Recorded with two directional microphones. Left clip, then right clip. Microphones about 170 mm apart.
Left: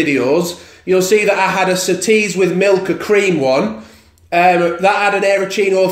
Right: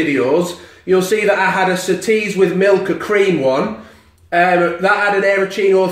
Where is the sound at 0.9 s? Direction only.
45° left (ahead or behind).